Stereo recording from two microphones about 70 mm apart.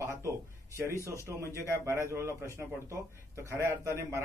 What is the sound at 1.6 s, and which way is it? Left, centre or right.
A man's voice, right.